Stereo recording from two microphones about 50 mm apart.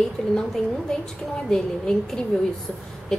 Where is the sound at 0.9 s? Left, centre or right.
Centre.